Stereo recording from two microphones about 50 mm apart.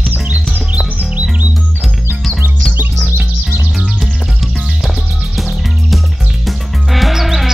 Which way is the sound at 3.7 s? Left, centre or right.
Centre.